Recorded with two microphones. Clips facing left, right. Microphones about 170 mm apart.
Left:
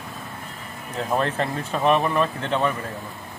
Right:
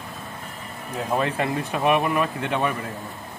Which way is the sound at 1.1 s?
10° right (ahead or behind).